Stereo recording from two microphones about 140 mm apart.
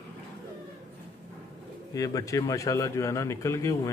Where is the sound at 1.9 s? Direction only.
25° left (ahead or behind).